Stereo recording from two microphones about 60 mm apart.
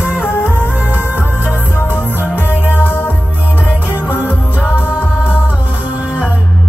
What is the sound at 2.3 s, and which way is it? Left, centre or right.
Music, left.